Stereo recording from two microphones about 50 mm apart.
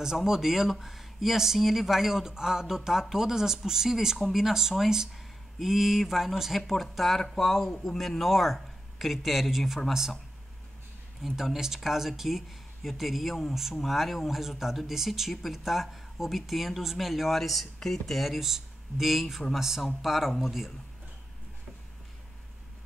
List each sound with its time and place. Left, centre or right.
0.0 s speech: centre
11.2 s speech: centre